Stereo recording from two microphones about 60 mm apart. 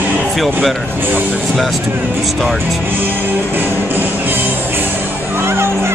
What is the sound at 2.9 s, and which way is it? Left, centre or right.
Music, right.